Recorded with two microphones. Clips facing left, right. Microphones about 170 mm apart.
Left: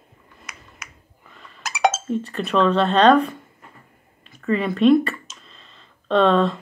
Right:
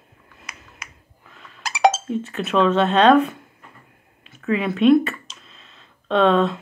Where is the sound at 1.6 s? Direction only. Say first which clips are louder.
Right 3 dB; 30° right (ahead or behind).